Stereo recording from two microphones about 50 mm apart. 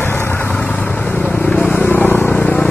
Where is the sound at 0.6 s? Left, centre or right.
Left.